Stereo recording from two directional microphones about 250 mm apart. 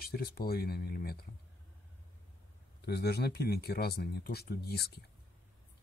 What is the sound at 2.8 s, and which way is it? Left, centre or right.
Speech, left.